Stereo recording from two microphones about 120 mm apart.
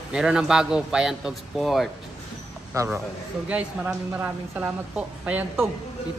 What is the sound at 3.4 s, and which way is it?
A woman's voice, 10° right (ahead or behind).